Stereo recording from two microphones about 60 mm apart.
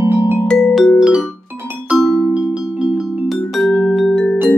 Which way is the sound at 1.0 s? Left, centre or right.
Centre.